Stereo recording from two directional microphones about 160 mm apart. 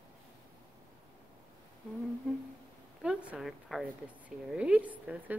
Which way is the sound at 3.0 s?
5° right (ahead or behind).